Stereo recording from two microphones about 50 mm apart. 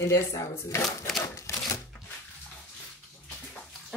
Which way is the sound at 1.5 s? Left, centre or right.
Left.